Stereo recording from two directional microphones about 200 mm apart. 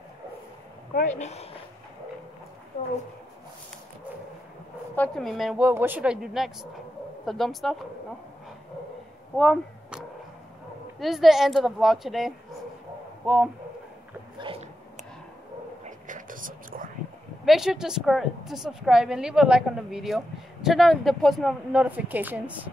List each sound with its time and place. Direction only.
1.1 s speech: 35° left (ahead or behind)
4.9 s a woman's voice: 5° left (ahead or behind)
9.4 s a woman's voice: centre (ahead or behind)
14.4 s dog: 25° right (ahead or behind)
15.8 s a sound: 40° right (ahead or behind)
17.5 s a woman's voice: centre (ahead or behind)